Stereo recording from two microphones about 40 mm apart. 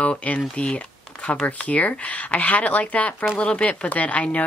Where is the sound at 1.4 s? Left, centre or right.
Left.